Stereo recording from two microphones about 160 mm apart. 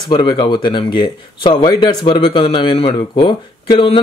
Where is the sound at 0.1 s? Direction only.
30° left (ahead or behind).